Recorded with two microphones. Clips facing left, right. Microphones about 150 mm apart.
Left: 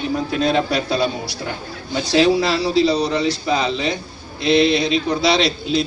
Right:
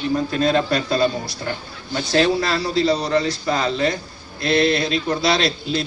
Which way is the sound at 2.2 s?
5° left (ahead or behind).